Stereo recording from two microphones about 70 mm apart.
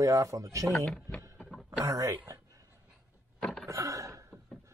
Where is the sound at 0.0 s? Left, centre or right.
Right.